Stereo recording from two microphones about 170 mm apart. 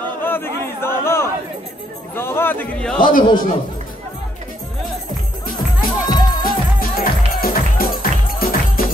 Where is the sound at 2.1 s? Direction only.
15° left (ahead or behind).